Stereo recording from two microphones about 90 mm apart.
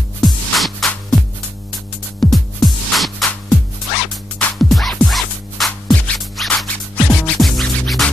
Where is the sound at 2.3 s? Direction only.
Centre (ahead or behind).